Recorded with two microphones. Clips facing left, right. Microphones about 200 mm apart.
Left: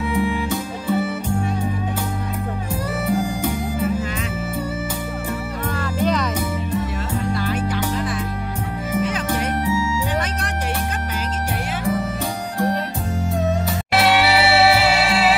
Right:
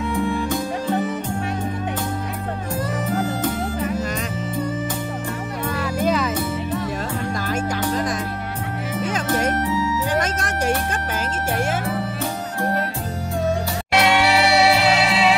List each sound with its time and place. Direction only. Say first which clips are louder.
0.1 s music: left 1 dB; 10° left (ahead or behind)
3.1 s music: left 3 dB; 10° left (ahead or behind)
5.8 s music: even; 10° right (ahead or behind)
7.4 s music: even; 45° right (ahead or behind)
13.9 s music: left 1 dB; centre (ahead or behind)